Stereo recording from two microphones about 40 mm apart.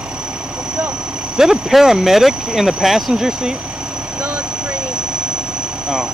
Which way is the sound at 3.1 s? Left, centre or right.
Centre.